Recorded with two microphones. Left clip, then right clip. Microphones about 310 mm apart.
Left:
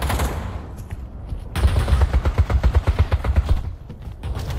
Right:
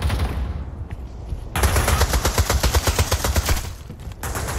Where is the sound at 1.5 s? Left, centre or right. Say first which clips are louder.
Right 6 dB; centre.